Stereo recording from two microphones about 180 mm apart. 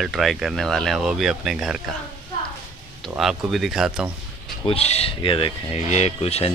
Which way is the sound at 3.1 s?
5° right (ahead or behind).